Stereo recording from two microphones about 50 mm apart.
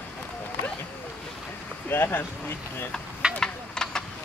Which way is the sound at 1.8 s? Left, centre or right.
Left.